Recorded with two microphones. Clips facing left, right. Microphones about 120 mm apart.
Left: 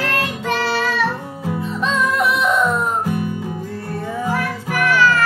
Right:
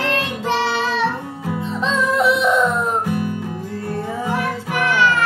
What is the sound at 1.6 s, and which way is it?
Music, 25° right (ahead or behind).